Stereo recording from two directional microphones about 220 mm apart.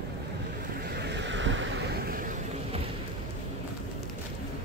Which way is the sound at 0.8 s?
45° right (ahead or behind).